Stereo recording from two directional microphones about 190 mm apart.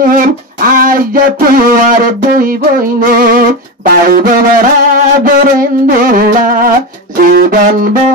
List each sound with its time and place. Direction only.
0.0 s music: 45° right (ahead or behind)